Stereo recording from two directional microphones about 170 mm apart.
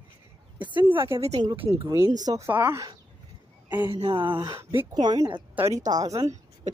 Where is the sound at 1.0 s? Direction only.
15° right (ahead or behind).